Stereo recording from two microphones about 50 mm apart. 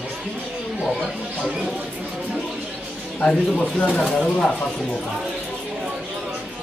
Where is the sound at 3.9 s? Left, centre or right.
Centre.